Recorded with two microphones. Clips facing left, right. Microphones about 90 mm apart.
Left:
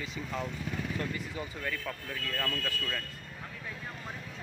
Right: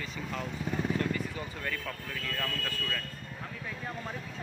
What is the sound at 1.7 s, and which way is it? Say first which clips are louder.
Speech: even; 5° left (ahead or behind).